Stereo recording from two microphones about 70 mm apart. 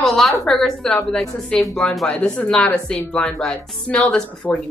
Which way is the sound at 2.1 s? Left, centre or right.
Left.